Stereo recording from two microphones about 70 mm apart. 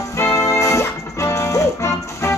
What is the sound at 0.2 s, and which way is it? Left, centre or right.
Music, left.